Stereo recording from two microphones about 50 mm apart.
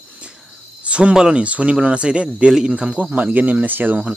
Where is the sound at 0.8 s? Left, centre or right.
Right.